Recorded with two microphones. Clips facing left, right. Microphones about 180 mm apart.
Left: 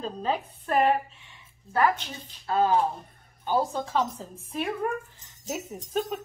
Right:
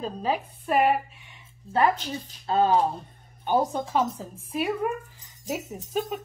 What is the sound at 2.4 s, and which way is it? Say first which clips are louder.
A woman's voice: right 2 dB; 25° right (ahead or behind).